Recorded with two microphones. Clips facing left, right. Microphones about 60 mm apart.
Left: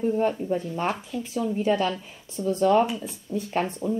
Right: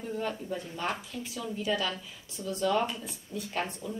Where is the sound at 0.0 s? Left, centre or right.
Left.